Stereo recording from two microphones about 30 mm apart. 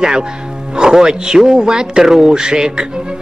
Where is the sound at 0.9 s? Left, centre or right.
Right.